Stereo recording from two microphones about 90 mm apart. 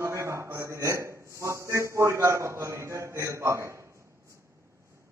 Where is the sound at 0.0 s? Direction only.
30° right (ahead or behind).